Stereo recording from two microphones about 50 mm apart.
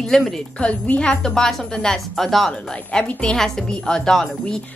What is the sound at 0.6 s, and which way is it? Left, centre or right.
Speech, left.